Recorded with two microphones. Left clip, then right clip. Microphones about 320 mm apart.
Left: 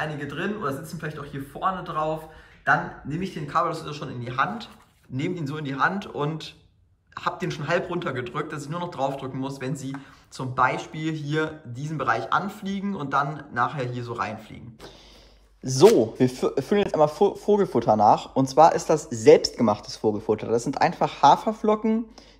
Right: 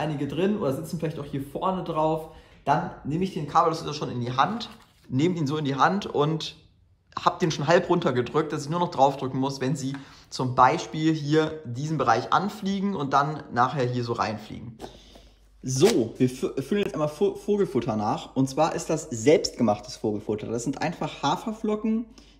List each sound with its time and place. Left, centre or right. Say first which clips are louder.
0.0 s speech: right 2 dB; centre
15.6 s speech: left 5 dB; centre